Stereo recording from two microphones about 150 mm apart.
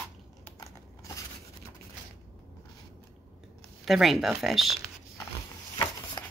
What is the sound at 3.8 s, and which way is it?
Speech, centre (ahead or behind).